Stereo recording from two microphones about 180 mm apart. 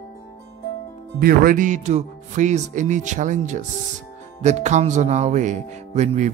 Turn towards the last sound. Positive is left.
turn(degrees=-40)  # may be behind; listen again after turning